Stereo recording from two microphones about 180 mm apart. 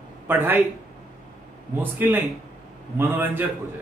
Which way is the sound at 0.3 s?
10° right (ahead or behind).